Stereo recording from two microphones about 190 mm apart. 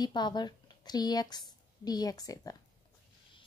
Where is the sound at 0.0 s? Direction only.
25° left (ahead or behind).